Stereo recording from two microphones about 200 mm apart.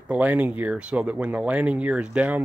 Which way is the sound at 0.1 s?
5° right (ahead or behind).